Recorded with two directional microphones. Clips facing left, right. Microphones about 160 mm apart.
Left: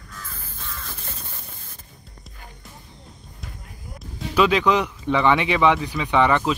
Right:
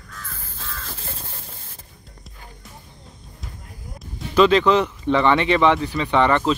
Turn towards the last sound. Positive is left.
turn(degrees=10)  # may be behind; listen again after turning